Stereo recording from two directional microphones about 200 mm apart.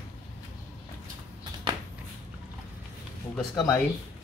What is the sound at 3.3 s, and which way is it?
Speech, 5° left (ahead or behind).